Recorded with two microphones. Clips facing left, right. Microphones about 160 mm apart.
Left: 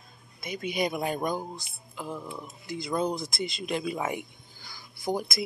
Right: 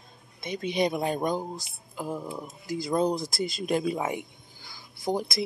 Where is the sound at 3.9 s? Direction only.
25° right (ahead or behind).